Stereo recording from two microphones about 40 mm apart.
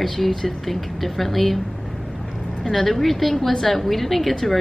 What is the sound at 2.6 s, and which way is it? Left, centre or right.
A woman's voice, centre.